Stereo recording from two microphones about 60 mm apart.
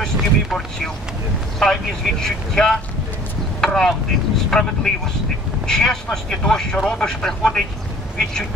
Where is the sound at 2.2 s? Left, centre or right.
Centre.